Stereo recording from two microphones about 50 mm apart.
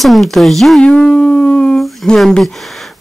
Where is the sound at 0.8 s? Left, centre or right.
Centre.